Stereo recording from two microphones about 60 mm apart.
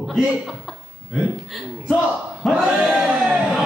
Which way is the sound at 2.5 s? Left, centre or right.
Centre.